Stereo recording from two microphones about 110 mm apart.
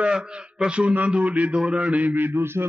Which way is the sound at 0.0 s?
10° right (ahead or behind).